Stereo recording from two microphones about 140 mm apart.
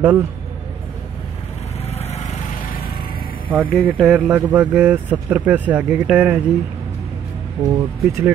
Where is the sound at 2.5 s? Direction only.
90° left.